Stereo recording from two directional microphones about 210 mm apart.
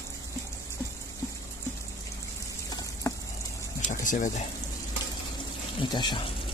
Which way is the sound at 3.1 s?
15° left (ahead or behind).